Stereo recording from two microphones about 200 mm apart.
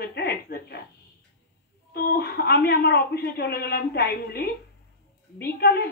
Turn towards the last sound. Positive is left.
turn(degrees=55)  # may be behind; listen again after turning